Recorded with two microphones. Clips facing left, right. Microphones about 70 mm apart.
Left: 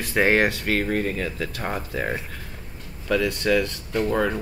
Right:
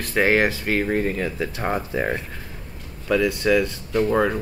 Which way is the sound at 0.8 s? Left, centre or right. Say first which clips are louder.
Right 2 dB; right.